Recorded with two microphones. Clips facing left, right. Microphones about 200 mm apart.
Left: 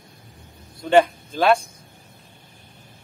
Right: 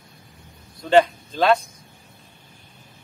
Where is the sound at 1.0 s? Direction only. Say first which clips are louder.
Left 1 dB; 10° left (ahead or behind).